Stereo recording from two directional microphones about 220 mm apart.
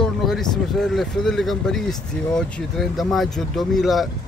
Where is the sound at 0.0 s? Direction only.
Centre (ahead or behind).